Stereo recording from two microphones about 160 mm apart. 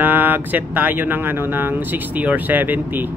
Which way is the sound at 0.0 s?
10° right (ahead or behind).